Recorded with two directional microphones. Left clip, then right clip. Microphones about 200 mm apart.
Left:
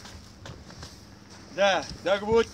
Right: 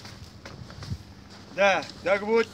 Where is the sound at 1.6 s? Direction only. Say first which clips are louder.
Right 1 dB; 25° right (ahead or behind).